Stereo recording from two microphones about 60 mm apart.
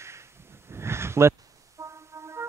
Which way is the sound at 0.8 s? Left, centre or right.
Right.